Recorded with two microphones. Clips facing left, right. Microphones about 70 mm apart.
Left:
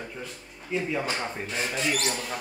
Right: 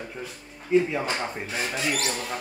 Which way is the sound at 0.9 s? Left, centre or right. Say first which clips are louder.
Right 1 dB; centre.